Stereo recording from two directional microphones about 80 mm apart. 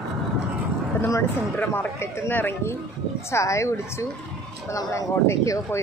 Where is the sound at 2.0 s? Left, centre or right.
Left.